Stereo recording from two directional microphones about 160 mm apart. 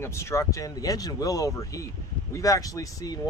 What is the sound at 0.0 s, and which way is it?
Speech, 15° left (ahead or behind).